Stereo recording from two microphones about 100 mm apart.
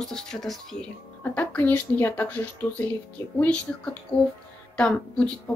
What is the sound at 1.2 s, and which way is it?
Speech, 20° left (ahead or behind).